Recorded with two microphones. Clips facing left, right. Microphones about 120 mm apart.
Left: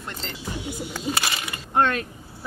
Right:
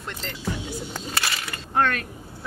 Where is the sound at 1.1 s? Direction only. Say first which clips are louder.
Left 1 dB; 20° left (ahead or behind).